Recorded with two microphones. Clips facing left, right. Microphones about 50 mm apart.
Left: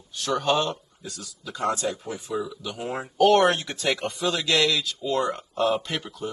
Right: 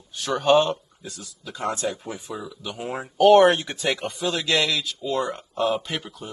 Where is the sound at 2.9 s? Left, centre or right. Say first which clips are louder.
Right 4 dB; centre.